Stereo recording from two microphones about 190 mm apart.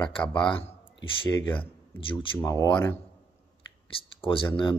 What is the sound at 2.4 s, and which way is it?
Speech, 15° left (ahead or behind).